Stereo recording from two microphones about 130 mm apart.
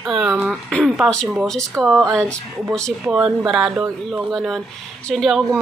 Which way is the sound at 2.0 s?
20° right (ahead or behind).